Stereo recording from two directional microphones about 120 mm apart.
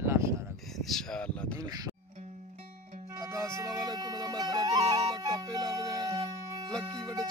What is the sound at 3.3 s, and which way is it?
Music, 30° right (ahead or behind).